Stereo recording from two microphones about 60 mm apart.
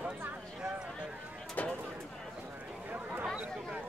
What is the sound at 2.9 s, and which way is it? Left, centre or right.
Chatter, right.